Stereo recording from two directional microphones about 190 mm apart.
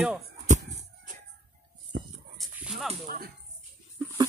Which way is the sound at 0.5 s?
40° right (ahead or behind).